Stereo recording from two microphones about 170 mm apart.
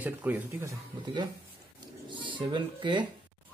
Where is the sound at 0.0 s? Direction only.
10° right (ahead or behind).